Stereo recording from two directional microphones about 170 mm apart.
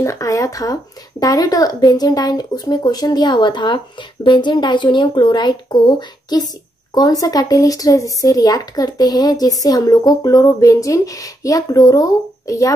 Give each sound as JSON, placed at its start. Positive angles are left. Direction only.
{"t": 0.0, "sound": "speech", "side_deg": 15}